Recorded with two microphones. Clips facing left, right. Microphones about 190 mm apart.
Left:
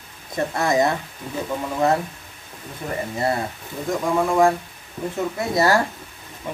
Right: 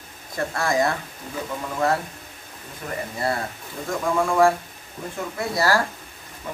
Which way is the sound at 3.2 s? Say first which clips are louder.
Left 2 dB; 25° left (ahead or behind).